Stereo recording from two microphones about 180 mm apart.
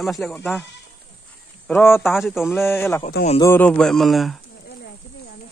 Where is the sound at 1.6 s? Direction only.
10° left (ahead or behind).